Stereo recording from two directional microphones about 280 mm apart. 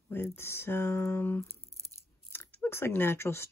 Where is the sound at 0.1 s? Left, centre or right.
Centre.